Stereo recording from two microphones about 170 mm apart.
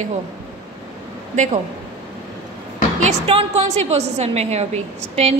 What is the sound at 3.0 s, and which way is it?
A woman's voice, 35° right (ahead or behind).